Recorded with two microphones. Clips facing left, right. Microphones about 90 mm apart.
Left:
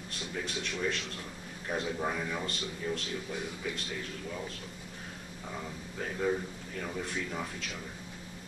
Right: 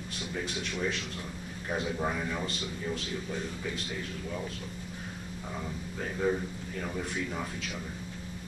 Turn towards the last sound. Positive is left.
turn(degrees=-5)  # may be behind; listen again after turning